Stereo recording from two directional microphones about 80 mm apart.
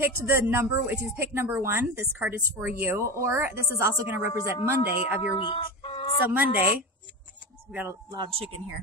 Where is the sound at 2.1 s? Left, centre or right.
Centre.